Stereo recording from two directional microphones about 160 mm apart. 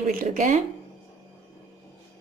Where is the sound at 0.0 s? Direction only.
55° right (ahead or behind).